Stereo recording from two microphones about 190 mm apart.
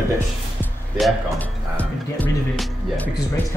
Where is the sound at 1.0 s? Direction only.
10° left (ahead or behind).